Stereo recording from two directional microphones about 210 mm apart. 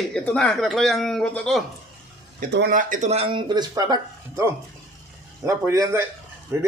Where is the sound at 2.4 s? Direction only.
45° right (ahead or behind).